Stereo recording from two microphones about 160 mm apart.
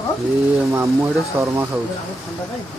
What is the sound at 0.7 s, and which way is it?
Speech, 15° right (ahead or behind).